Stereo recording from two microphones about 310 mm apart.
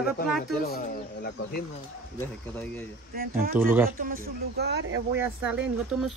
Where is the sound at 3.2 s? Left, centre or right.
Right.